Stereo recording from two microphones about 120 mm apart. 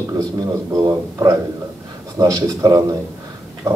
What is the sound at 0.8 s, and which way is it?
A man's voice, 30° right (ahead or behind).